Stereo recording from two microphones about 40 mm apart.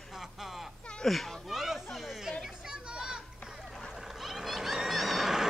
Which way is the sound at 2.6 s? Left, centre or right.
Right.